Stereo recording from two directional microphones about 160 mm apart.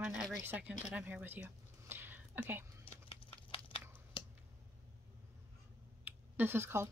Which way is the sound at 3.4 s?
30° left (ahead or behind).